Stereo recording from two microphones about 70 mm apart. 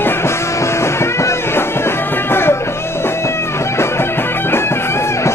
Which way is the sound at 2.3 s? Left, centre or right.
Left.